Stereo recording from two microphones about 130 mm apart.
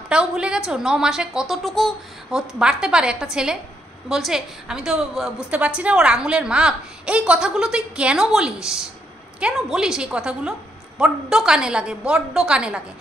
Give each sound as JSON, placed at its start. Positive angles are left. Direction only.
{"t": 0.1, "sound": "a woman's voice", "side_deg": -5}